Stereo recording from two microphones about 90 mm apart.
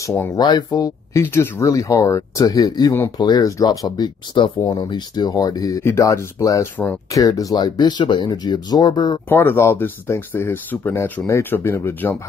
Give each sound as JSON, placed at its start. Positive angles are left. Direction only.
{"t": 0.0, "sound": "speech", "side_deg": 35}
{"t": 0.4, "sound": "speech", "side_deg": 50}
{"t": 1.2, "sound": "speech", "side_deg": 30}
{"t": 9.3, "sound": "speech", "side_deg": 25}